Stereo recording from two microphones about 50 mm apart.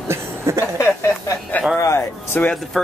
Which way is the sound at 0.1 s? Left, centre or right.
Right.